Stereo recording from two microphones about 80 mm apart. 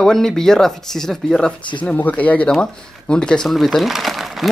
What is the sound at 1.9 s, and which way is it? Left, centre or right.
Speech, centre.